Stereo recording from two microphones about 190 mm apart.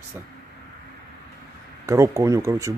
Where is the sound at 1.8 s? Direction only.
15° right (ahead or behind).